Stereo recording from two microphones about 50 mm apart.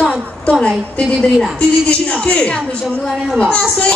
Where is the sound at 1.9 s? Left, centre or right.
Left.